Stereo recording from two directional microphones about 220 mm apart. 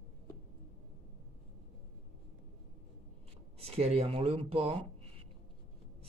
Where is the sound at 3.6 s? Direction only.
25° right (ahead or behind).